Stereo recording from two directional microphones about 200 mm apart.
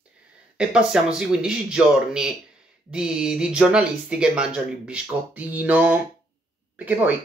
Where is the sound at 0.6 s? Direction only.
5° right (ahead or behind).